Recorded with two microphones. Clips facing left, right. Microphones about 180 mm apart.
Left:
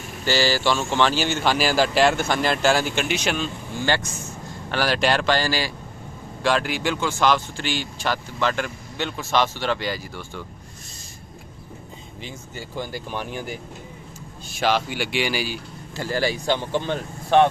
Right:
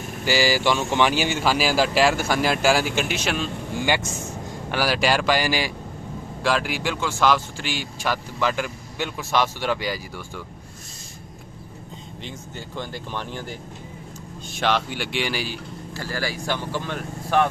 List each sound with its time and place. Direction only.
0.2 s speech: 10° right (ahead or behind)
4.6 s speech: 10° right (ahead or behind)
6.4 s speech: 5° right (ahead or behind)
12.2 s speech: 5° left (ahead or behind)
16.0 s speech: 20° left (ahead or behind)